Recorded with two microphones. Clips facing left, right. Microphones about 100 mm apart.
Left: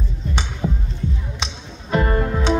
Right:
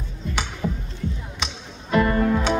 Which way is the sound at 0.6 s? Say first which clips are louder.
Left 3 dB; 25° left (ahead or behind).